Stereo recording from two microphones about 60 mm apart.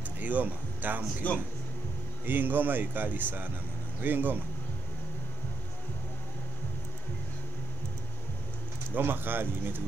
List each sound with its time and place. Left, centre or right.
0.2 s speech: right
1.2 s speech: left
2.2 s speech: right
8.9 s speech: right